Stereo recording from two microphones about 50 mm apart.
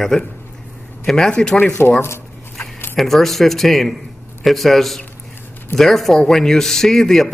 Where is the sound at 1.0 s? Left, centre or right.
Centre.